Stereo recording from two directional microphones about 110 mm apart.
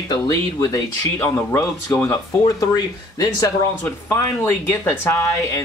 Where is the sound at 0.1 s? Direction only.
35° left (ahead or behind).